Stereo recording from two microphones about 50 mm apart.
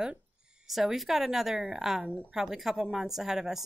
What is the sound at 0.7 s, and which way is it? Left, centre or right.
Speech, centre.